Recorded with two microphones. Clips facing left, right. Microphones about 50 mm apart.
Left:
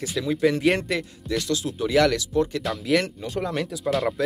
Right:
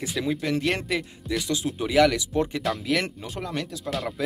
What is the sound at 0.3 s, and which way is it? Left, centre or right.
Speech, centre.